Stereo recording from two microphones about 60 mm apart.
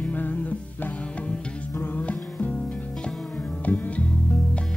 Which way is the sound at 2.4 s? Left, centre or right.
Centre.